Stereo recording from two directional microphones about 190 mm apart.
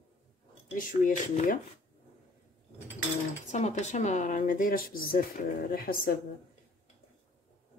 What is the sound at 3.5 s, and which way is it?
Speech, 40° left (ahead or behind).